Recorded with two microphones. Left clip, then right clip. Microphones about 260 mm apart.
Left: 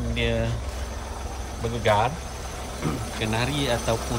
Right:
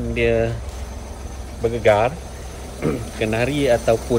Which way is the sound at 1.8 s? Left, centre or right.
Left.